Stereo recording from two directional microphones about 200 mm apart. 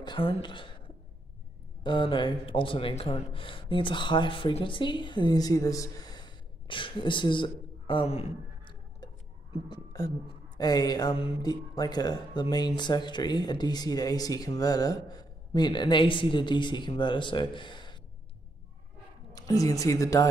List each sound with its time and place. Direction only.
0.0 s a sound: 25° left (ahead or behind)
1.8 s speech: 25° left (ahead or behind)
19.3 s speech: 15° left (ahead or behind)